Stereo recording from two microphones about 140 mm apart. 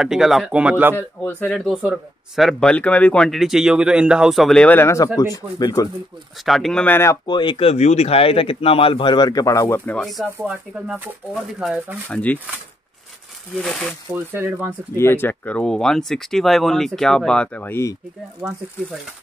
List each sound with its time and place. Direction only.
0.0 s speech: 5° right (ahead or behind)
0.9 s speech: 10° left (ahead or behind)
1.8 s speech: 5° right (ahead or behind); by 5.9 s 25° left (ahead or behind)
6.4 s speech: centre (ahead or behind)
7.2 s speech: 35° left (ahead or behind)
9.8 s speech: 5° left (ahead or behind)
10.4 s speech: 10° right (ahead or behind)
12.1 s speech: 10° left (ahead or behind)
13.6 s speech: 5° left (ahead or behind)
14.1 s speech: 15° right (ahead or behind)
15.0 s speech: 15° left (ahead or behind)